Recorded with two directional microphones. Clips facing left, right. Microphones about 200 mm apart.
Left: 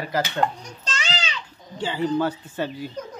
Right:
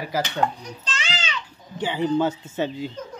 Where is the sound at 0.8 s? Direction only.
40° left (ahead or behind).